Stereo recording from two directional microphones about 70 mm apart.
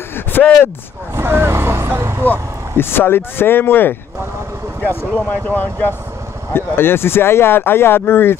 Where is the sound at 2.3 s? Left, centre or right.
Left.